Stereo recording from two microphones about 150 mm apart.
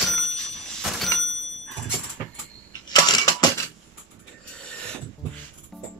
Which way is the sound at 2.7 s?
25° left (ahead or behind).